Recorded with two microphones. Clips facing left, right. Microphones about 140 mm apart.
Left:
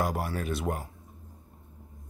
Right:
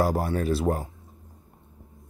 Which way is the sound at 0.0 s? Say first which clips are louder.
Right 6 dB; 35° right (ahead or behind).